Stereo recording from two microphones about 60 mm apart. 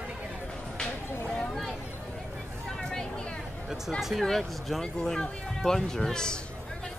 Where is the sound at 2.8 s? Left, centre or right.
Centre.